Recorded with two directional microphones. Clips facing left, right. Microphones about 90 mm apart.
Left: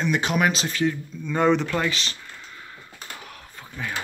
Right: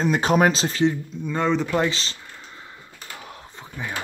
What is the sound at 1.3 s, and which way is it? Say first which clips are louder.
Speech: left 2 dB; 5° left (ahead or behind).